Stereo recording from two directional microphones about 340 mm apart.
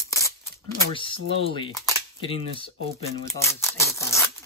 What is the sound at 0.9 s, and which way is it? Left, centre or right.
Speech, centre.